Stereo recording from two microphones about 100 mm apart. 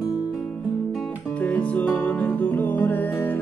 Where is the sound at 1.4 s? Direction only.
15° left (ahead or behind).